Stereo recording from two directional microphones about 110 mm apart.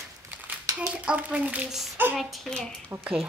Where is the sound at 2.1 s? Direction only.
5° left (ahead or behind).